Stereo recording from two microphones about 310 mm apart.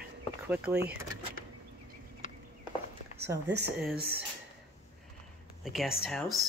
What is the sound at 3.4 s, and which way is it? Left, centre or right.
Speech, right.